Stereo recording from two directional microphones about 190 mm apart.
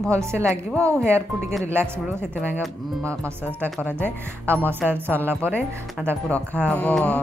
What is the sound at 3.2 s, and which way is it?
Speech, 10° right (ahead or behind).